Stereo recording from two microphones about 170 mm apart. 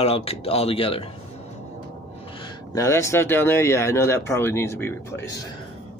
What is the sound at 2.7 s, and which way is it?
Speech, 20° left (ahead or behind).